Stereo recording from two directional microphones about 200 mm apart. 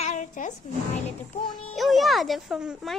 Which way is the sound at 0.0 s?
35° left (ahead or behind).